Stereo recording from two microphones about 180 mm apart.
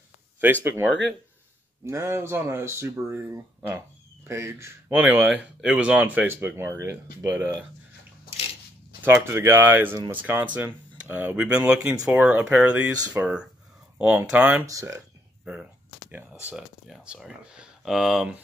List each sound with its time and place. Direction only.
1.9 s speech: 15° right (ahead or behind)
5.0 s speech: 5° right (ahead or behind)
9.0 s speech: 15° right (ahead or behind)
14.7 s speech: 20° right (ahead or behind)
15.4 s speech: 5° right (ahead or behind)